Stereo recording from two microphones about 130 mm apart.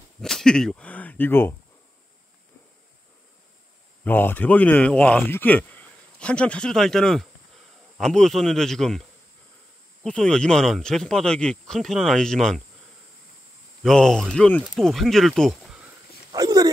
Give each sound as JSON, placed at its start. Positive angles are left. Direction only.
{"t": 0.2, "sound": "speech", "side_deg": 5}
{"t": 4.0, "sound": "speech", "side_deg": 15}
{"t": 10.0, "sound": "speech", "side_deg": 5}
{"t": 13.8, "sound": "speech", "side_deg": 5}
{"t": 16.3, "sound": "a sound", "side_deg": -30}